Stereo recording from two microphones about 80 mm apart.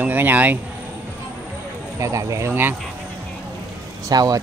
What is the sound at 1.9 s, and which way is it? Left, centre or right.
Speech, right.